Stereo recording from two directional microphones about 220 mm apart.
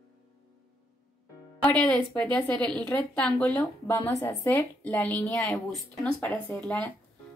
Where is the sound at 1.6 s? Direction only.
5° left (ahead or behind).